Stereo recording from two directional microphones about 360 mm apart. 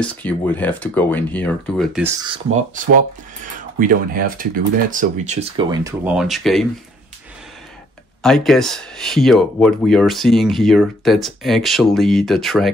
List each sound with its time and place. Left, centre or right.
0.0 s speech: centre
8.2 s speech: centre